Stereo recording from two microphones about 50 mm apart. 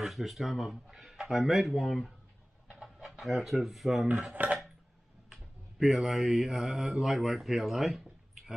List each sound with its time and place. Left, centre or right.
0.0 s speech: centre
2.7 s chicken: centre
3.1 s speech: centre
4.3 s dishes: right
5.3 s mantra: centre